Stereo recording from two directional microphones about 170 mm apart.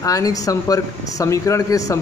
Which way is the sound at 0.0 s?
20° left (ahead or behind).